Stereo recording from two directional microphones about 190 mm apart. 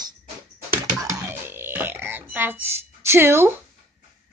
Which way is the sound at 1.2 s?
10° right (ahead or behind).